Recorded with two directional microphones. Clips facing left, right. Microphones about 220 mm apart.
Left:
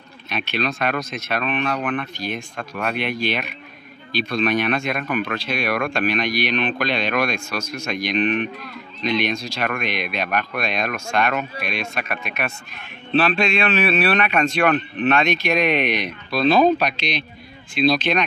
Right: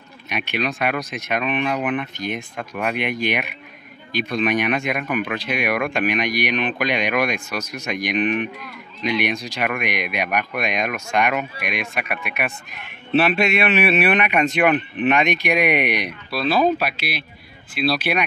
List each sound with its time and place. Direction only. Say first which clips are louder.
0.3 s speech: even; 15° right (ahead or behind)
17.7 s speech: left 3 dB; 5° right (ahead or behind)